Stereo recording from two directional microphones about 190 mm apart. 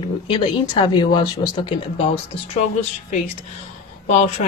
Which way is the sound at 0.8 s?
25° left (ahead or behind).